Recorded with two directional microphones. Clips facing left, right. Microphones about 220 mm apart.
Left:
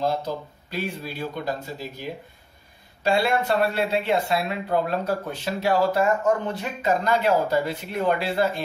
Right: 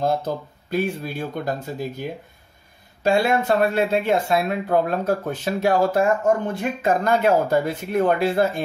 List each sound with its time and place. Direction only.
0.0 s speech: 50° right (ahead or behind)